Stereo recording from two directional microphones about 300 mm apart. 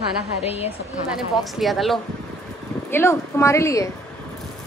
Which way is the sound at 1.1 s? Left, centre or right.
Centre.